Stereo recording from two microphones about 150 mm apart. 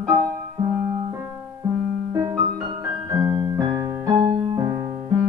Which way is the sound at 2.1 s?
25° right (ahead or behind).